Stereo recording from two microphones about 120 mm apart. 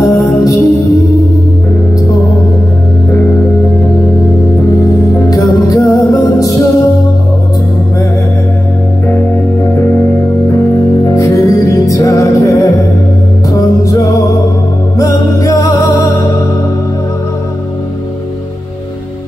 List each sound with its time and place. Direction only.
0.0 s music: 30° left (ahead or behind)
5.3 s music: 30° left (ahead or behind)
9.0 s music: 20° left (ahead or behind)
11.1 s music: 30° left (ahead or behind)